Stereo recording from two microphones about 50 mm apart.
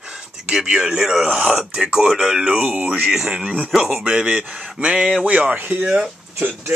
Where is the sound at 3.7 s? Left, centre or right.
Centre.